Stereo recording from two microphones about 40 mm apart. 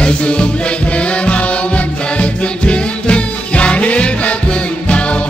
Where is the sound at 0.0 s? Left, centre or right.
Left.